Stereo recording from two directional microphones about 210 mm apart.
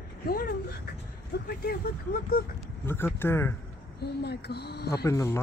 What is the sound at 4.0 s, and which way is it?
Speech, 50° left (ahead or behind).